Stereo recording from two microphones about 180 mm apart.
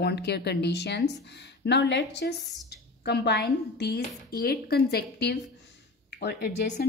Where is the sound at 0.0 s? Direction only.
65° left (ahead or behind).